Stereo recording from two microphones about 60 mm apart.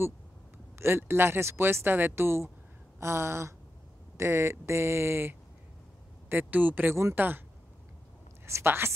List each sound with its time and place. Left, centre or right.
0.7 s speech: right
8.5 s speech: right